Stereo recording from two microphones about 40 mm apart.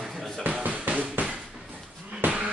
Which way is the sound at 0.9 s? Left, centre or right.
Right.